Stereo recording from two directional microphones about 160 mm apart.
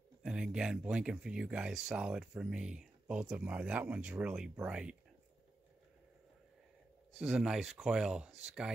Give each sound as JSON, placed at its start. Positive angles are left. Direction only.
{"t": 0.2, "sound": "speech", "side_deg": -5}
{"t": 7.2, "sound": "speech", "side_deg": -5}